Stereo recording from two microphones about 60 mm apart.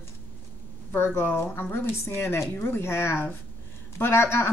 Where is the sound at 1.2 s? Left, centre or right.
Left.